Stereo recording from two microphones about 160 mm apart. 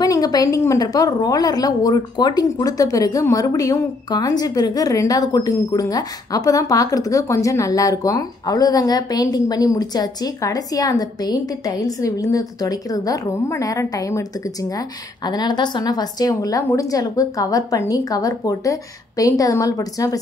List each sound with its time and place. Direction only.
0.0 s a woman's voice: 25° left (ahead or behind)